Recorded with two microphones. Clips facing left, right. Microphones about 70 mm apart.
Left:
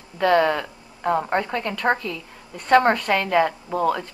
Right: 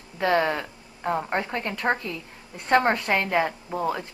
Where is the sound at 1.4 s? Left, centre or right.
Centre.